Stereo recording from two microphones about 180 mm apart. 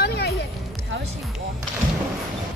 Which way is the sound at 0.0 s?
65° left (ahead or behind).